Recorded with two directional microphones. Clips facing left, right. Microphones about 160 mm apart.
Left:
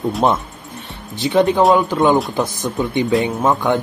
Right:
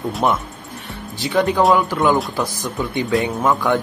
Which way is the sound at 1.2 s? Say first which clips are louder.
Left 3 dB; 20° left (ahead or behind).